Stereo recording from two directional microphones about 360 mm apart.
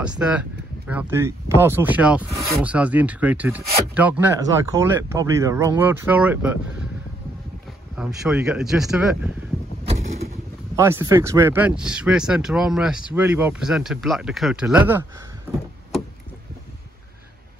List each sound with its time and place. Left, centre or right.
0.0 s speech: centre
8.0 s speech: centre
9.8 s vehicle: centre
10.8 s speech: centre